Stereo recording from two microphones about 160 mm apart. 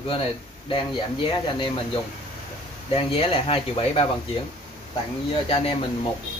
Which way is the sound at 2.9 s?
35° left (ahead or behind).